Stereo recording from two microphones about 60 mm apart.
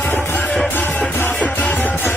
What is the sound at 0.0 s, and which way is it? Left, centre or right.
Music, left.